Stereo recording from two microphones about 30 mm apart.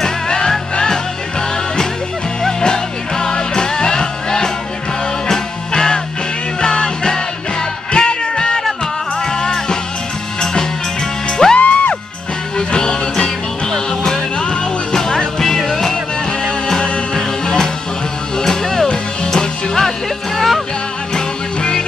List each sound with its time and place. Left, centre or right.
2.6 s music: left
5.7 s music: left
7.9 s music: left
11.5 s music: left
12.5 s music: left
14.4 s music: left
15.0 s music: centre
16.8 s music: left
18.4 s music: centre
20.3 s music: centre